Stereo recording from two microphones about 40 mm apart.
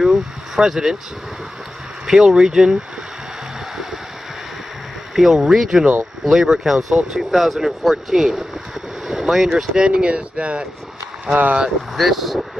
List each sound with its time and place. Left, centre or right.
0.0 s vehicle: centre
2.0 s speech: centre
5.1 s speech: centre
9.8 s speech: right
11.2 s speech: right
11.9 s speech: centre